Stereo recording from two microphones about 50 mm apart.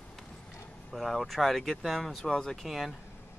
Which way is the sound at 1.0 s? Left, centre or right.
Centre.